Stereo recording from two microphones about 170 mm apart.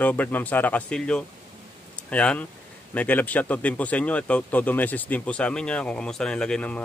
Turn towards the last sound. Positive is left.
turn(degrees=5)  # may be behind; listen again after turning